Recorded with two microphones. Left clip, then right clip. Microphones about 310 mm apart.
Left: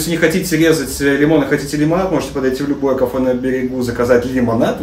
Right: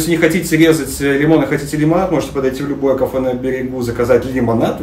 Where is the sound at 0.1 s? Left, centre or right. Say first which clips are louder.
Right 1 dB; centre.